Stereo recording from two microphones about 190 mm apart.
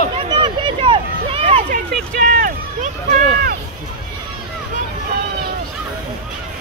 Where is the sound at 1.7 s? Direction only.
45° right (ahead or behind).